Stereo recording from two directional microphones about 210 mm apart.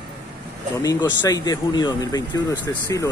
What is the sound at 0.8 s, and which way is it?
Speech, 20° left (ahead or behind).